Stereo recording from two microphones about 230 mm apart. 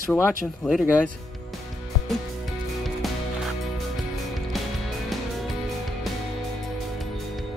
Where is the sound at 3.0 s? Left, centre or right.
Centre.